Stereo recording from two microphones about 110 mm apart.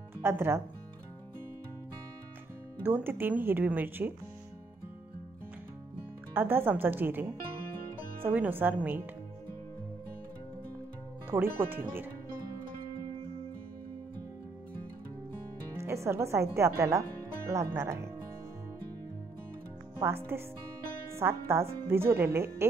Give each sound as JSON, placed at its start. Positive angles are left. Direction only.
{"t": 0.2, "sound": "speech", "side_deg": -20}
{"t": 2.8, "sound": "speech", "side_deg": -20}
{"t": 6.3, "sound": "speech", "side_deg": -20}
{"t": 11.2, "sound": "speech", "side_deg": -20}
{"t": 15.7, "sound": "speech", "side_deg": -25}
{"t": 20.0, "sound": "speech", "side_deg": -20}